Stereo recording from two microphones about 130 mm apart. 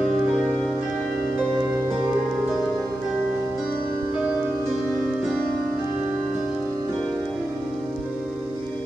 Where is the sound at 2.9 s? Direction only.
25° right (ahead or behind).